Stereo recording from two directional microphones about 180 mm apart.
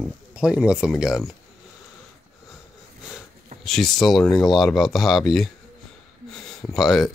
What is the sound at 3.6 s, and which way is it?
Speech, centre (ahead or behind).